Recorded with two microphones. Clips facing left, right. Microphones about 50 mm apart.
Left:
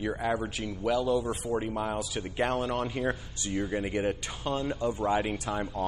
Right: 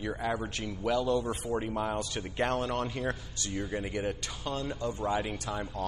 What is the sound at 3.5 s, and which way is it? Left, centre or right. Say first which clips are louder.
Speech: left 4 dB; left.